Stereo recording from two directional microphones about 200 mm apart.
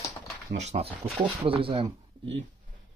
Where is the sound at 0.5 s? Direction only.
35° right (ahead or behind).